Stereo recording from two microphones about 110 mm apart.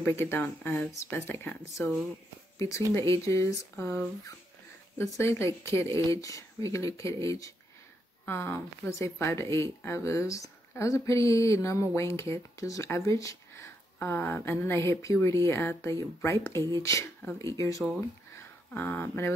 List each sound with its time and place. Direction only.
0.0 s speech: 20° left (ahead or behind)
18.7 s speech: 15° left (ahead or behind)